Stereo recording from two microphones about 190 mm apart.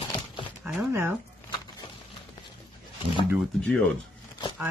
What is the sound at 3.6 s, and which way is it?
Speech, 5° left (ahead or behind).